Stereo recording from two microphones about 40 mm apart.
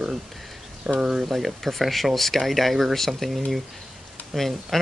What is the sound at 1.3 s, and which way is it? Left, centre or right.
Speech, centre.